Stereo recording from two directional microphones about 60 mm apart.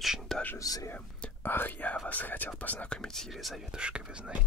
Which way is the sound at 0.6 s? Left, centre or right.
Left.